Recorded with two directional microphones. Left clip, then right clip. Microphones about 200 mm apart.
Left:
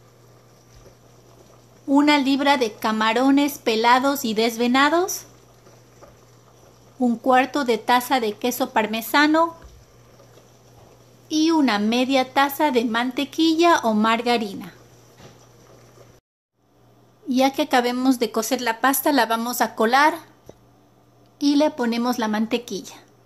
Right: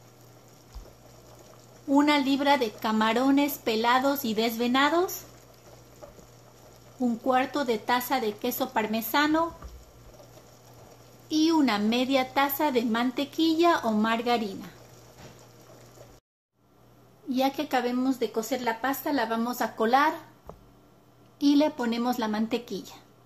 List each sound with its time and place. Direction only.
1.9 s a woman's voice: 20° left (ahead or behind)
7.0 s a woman's voice: 25° left (ahead or behind)
11.2 s a woman's voice: 15° left (ahead or behind)
17.3 s a woman's voice: 30° left (ahead or behind)
21.4 s a woman's voice: 15° left (ahead or behind)